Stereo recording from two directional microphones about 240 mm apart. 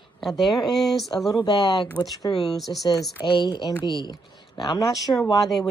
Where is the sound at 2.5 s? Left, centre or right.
Centre.